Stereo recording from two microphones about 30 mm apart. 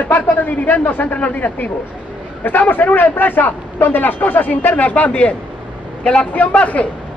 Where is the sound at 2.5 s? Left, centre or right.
Left.